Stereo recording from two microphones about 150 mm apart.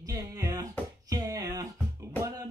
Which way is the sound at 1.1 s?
25° right (ahead or behind).